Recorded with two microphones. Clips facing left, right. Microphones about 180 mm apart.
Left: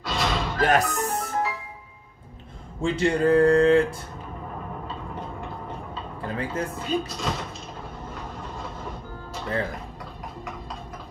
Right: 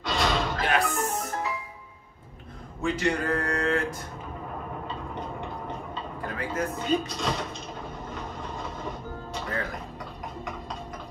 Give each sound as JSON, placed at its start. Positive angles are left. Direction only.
{"t": 0.0, "sound": "music", "side_deg": 0}
{"t": 0.6, "sound": "music", "side_deg": 45}
{"t": 2.8, "sound": "speech", "side_deg": 30}
{"t": 6.2, "sound": "speech", "side_deg": 30}
{"t": 6.8, "sound": "speech", "side_deg": 0}